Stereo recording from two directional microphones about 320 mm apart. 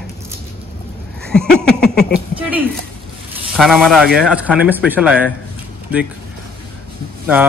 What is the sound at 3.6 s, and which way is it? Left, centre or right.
Speech, centre.